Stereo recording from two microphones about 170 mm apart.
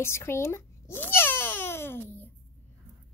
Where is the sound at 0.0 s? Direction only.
15° left (ahead or behind).